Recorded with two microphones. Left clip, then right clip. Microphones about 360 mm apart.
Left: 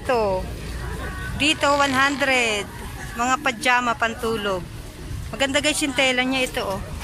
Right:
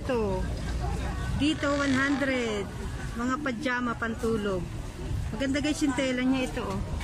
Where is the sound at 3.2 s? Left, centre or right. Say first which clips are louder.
Left 10 dB; centre.